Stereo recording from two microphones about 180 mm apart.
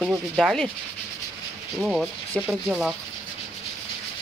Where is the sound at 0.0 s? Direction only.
Centre (ahead or behind).